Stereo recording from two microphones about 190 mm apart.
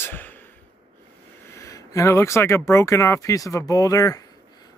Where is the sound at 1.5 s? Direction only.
15° left (ahead or behind).